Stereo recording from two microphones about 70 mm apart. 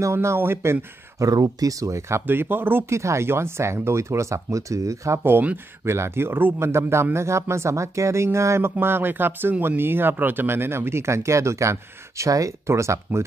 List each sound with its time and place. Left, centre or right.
0.0 s a man's voice: right
1.2 s a man's voice: right
3.0 s speech: right
5.2 s speech: right
5.9 s a man's voice: right